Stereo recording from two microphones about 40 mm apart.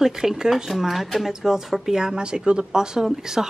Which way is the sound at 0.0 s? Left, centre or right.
Centre.